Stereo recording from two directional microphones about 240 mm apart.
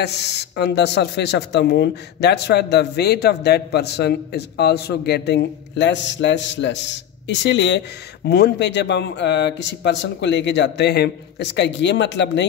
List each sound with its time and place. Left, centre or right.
0.0 s speech: left